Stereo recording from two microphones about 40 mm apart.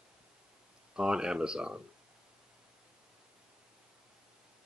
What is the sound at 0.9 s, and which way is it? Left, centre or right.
Speech, right.